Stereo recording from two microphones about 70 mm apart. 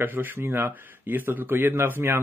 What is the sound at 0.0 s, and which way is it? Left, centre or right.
Speech, right.